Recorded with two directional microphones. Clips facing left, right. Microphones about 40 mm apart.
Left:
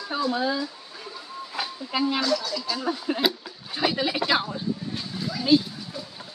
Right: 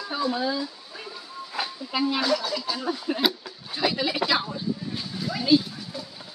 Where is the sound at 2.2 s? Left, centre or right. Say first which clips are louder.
Right 1 dB; centre.